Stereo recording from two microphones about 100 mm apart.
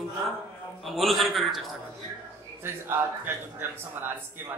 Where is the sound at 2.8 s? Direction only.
20° right (ahead or behind).